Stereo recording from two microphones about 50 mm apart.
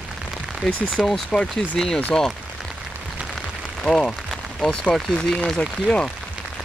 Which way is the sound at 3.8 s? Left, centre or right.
Centre.